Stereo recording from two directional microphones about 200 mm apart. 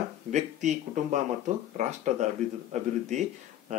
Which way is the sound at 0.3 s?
35° right (ahead or behind).